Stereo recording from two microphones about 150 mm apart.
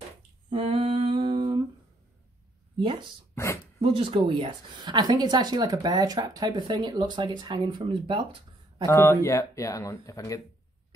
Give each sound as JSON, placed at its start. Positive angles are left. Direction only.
{"t": 0.5, "sound": "a sound", "side_deg": -40}
{"t": 2.8, "sound": "speech", "side_deg": -35}
{"t": 8.8, "sound": "speech", "side_deg": 20}